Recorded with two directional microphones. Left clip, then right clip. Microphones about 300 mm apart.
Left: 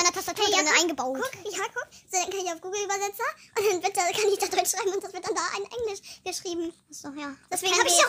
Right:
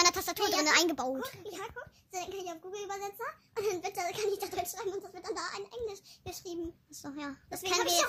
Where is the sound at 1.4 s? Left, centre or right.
Left.